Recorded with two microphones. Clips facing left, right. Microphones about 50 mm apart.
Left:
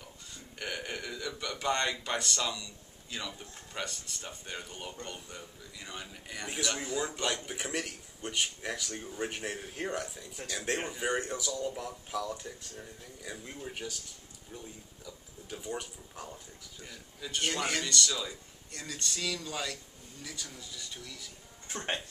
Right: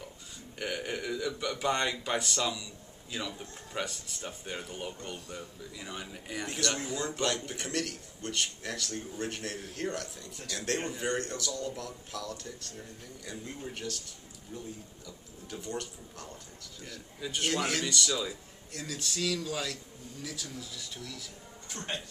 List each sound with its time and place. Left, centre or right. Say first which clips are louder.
0.6 s speech: right 3 dB; centre
6.4 s a man's voice: right 1 dB; centre
15.0 s speech: left 2 dB; centre
17.2 s speech: right 2 dB; centre
21.6 s speech: left 3 dB; left